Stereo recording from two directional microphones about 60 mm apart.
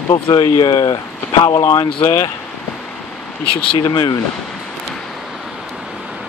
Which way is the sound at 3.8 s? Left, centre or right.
Left.